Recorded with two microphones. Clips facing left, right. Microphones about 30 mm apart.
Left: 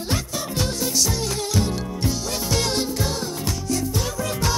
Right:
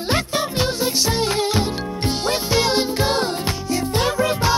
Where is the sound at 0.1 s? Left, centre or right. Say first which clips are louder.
Right 6 dB; right.